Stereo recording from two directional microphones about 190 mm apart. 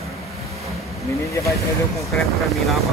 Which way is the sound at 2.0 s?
Centre (ahead or behind).